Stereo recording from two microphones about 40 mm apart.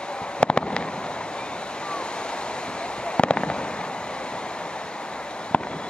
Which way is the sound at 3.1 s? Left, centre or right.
Left.